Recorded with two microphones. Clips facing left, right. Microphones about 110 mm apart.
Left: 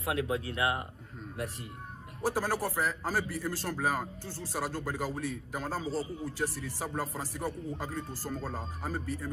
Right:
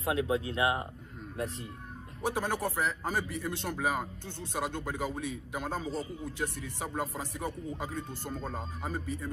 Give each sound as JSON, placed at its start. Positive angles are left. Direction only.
{"t": 0.0, "sound": "speech", "side_deg": -25}
{"t": 2.2, "sound": "a man's voice", "side_deg": 0}